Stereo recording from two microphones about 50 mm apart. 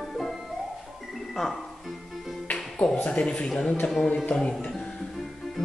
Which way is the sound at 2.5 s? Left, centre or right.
Centre.